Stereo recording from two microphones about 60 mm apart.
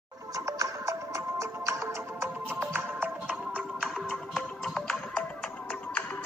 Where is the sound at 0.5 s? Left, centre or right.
Right.